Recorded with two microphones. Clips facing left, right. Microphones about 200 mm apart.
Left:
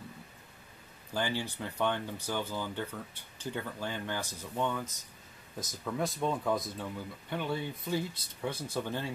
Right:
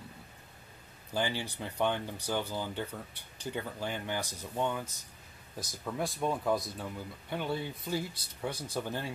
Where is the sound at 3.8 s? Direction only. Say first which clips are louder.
Right 2 dB; 15° right (ahead or behind).